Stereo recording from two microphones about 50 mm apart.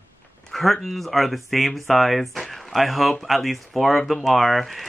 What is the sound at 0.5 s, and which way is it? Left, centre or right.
Speech, centre.